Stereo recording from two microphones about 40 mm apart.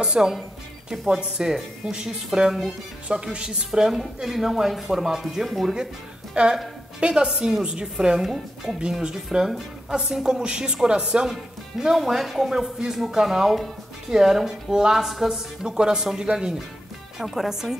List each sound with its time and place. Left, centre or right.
0.0 s a woman's voice: centre
6.4 s a woman's voice: right
11.8 s speech: centre
17.2 s speech: centre